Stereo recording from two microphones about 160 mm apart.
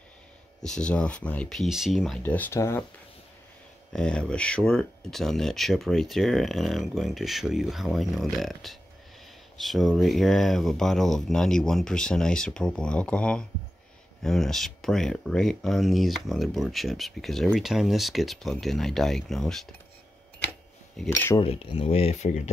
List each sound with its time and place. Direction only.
0.6 s speech: 5° left (ahead or behind)
2.2 s speech: 10° left (ahead or behind)
3.9 s speech: 5° left (ahead or behind)
21.0 s speech: centre (ahead or behind)
21.4 s speech: 35° left (ahead or behind)